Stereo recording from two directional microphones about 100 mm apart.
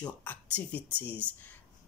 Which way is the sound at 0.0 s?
15° left (ahead or behind).